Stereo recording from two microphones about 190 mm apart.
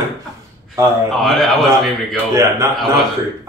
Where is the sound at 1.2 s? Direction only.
Centre (ahead or behind).